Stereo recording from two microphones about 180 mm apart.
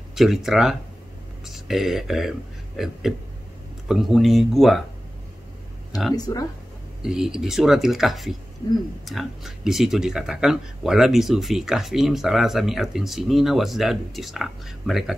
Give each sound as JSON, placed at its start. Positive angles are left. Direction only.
{"t": 0.1, "sound": "speech", "side_deg": 0}
{"t": 6.1, "sound": "speech", "side_deg": 20}
{"t": 7.0, "sound": "speech", "side_deg": -5}